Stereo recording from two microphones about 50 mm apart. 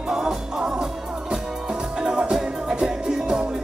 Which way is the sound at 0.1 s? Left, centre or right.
Centre.